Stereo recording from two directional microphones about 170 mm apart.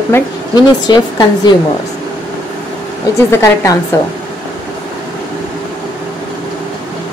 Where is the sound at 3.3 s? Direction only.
20° left (ahead or behind).